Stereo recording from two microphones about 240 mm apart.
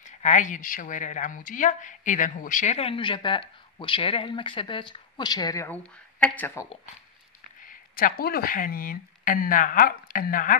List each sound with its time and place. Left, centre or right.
0.0 s a woman's voice: left; by 6.7 s centre
7.6 s speech: left